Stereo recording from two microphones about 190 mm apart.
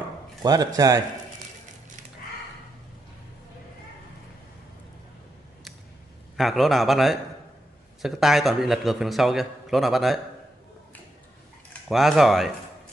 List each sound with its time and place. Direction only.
0.4 s a man's voice: 20° right (ahead or behind)
6.3 s a man's voice: centre (ahead or behind)
11.9 s a man's voice: centre (ahead or behind)